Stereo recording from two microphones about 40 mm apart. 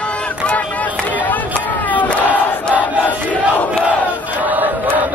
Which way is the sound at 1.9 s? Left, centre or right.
Left.